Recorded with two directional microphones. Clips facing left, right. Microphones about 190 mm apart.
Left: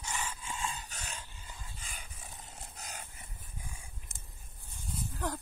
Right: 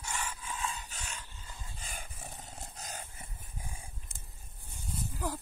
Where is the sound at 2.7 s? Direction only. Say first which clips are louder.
Right 2 dB; 35° right (ahead or behind).